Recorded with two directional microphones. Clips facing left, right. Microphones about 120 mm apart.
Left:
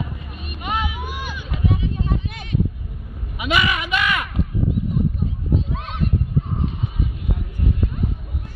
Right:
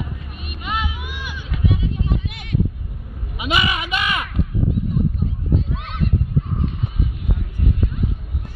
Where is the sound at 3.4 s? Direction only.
20° right (ahead or behind).